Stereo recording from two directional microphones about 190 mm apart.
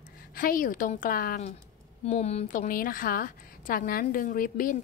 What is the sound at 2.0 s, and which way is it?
Speech, 35° left (ahead or behind).